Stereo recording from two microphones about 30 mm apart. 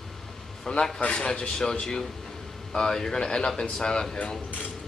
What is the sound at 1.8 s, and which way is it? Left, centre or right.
Speech, left.